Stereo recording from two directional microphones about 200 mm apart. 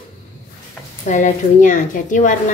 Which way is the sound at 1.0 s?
35° left (ahead or behind).